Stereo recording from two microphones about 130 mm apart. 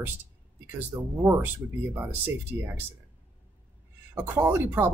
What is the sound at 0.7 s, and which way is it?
Speech, 15° right (ahead or behind).